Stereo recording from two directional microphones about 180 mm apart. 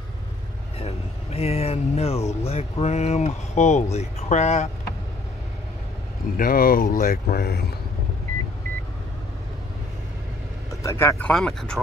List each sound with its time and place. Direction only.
0.7 s speech: 35° left (ahead or behind)
6.3 s speech: 55° left (ahead or behind)
10.8 s speech: 15° left (ahead or behind)